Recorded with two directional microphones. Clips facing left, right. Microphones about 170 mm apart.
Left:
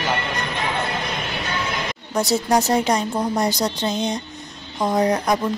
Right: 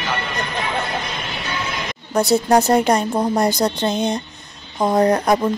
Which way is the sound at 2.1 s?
55° right (ahead or behind).